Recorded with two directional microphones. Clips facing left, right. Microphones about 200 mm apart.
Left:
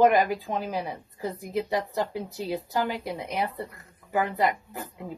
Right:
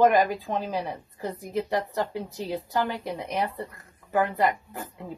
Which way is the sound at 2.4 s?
15° left (ahead or behind).